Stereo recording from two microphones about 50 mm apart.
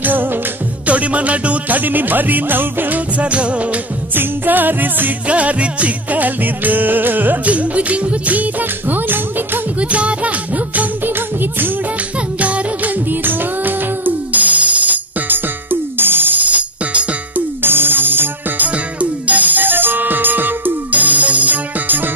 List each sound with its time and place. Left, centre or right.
0.0 s music: right
0.8 s music: right
3.2 s music: right
4.1 s music: right
5.3 s music: right
9.8 s music: right
12.4 s music: right
17.6 s music: right
18.9 s music: right